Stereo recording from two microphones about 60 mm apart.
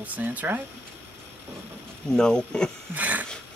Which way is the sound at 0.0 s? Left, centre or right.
Right.